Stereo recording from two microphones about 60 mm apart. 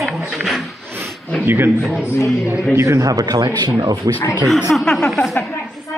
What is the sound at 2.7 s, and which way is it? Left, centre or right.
Speech, right.